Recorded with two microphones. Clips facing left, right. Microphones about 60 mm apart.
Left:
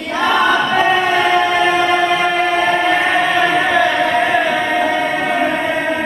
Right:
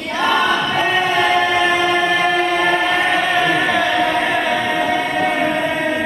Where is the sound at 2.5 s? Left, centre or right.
Centre.